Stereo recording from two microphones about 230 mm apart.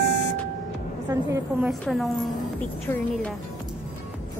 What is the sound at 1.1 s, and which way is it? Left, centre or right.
A woman's voice, centre.